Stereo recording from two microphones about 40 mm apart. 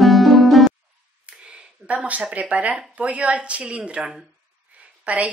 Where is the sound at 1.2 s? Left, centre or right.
Right.